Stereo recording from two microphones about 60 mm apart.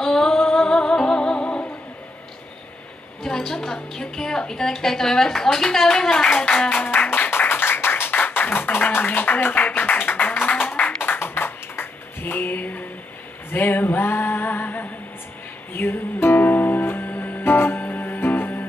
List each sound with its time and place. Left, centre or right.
0.0 s music: centre
3.3 s a woman's voice: centre
6.8 s music: left
10.6 s a sound: left
13.5 s male singing: left
15.7 s music: left